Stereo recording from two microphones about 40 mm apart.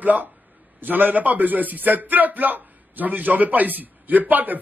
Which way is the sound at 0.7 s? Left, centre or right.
Right.